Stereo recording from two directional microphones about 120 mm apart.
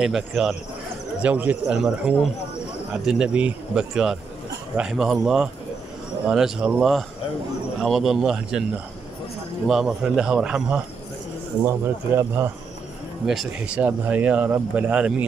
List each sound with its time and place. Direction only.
0.3 s a man's voice: centre (ahead or behind)
1.2 s a man's voice: 10° right (ahead or behind)
9.7 s a man's voice: 5° right (ahead or behind)
11.6 s speech: 20° right (ahead or behind)
13.6 s speech: 10° right (ahead or behind)